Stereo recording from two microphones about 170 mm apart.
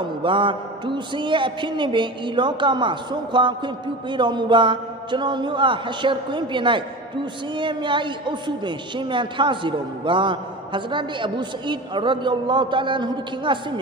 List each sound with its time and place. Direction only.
0.0 s a man's voice: 30° right (ahead or behind)